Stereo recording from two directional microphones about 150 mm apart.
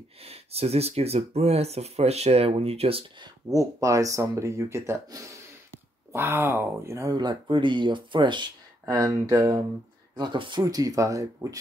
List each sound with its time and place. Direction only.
0.2 s speech: 40° right (ahead or behind)
3.5 s speech: 20° right (ahead or behind)